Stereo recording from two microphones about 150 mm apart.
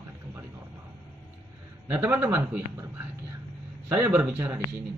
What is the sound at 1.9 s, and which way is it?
Speech, 15° right (ahead or behind).